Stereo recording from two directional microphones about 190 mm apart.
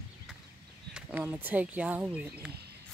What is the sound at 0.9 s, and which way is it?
Speech, 10° right (ahead or behind).